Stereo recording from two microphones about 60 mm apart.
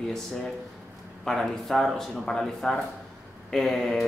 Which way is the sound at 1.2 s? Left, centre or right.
Centre.